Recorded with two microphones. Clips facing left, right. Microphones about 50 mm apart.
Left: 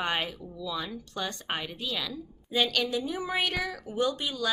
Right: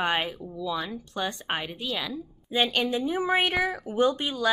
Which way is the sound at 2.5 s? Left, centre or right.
Right.